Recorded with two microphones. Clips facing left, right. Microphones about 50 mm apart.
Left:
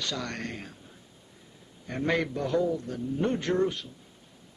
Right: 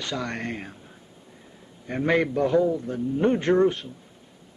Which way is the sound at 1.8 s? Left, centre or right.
Centre.